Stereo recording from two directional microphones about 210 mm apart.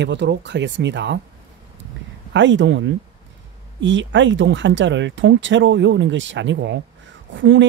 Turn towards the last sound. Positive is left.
turn(degrees=-60)  # may be behind; listen again after turning